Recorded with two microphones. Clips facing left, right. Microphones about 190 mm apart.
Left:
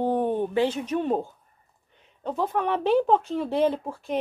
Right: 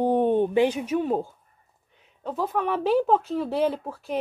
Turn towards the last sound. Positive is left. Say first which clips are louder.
# left 1 dB
turn(degrees=-5)  # may be behind; listen again after turning